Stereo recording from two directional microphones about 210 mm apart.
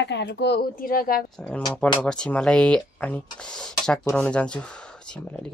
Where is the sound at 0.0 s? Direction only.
55° left (ahead or behind).